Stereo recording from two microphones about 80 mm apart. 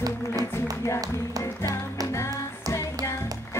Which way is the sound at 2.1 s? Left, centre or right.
Left.